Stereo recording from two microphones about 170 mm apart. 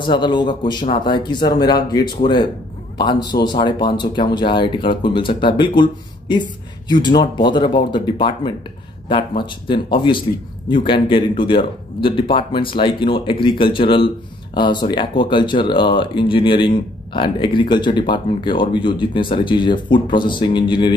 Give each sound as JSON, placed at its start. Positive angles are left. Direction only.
{"t": 0.0, "sound": "speech", "side_deg": 25}
{"t": 9.7, "sound": "speech", "side_deg": 30}